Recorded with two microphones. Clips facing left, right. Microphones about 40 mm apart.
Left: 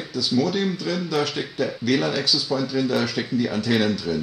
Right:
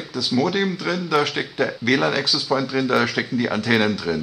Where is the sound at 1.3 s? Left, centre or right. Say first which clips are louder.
Right 3 dB; right.